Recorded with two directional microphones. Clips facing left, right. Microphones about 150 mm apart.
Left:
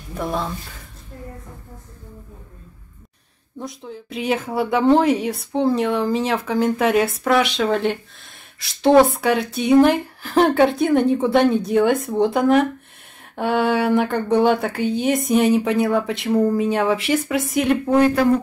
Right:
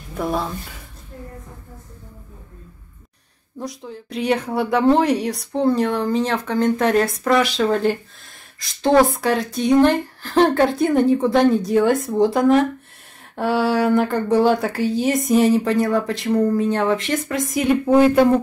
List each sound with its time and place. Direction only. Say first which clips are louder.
0.2 s speech: right 2 dB; 5° right (ahead or behind)
3.5 s speech: right 1 dB; centre (ahead or behind)
17.8 s speech: right 4 dB; 20° right (ahead or behind)